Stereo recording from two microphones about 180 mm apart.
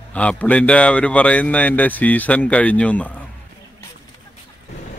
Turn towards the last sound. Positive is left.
turn(degrees=10)  # may be behind; listen again after turning